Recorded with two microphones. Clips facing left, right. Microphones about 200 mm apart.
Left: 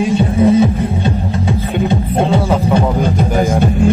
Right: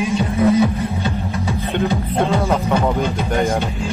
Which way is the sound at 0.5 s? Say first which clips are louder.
Left 4 dB; 25° left (ahead or behind).